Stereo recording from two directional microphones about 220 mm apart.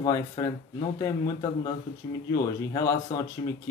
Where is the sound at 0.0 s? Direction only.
15° left (ahead or behind).